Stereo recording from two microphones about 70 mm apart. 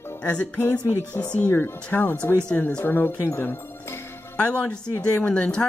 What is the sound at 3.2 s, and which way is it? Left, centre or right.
Music, left.